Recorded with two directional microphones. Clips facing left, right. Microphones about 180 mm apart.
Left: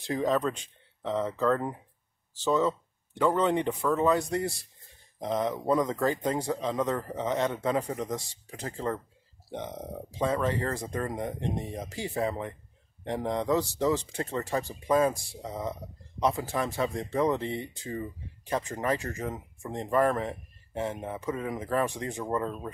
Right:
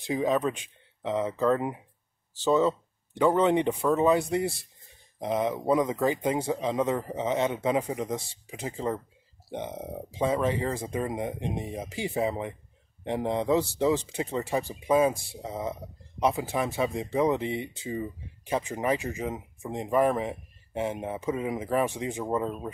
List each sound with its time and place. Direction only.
0.1 s speech: 5° right (ahead or behind)